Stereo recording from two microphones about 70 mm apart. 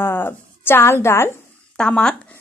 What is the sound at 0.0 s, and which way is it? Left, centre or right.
A woman's voice, left.